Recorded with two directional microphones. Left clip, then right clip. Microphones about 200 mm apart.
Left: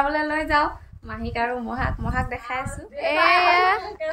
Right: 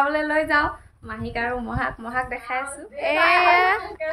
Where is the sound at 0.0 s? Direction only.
5° right (ahead or behind).